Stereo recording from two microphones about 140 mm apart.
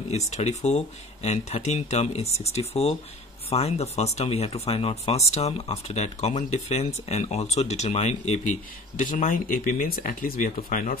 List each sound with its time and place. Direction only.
0.1 s speech: 50° left (ahead or behind); by 11.0 s 75° left (ahead or behind)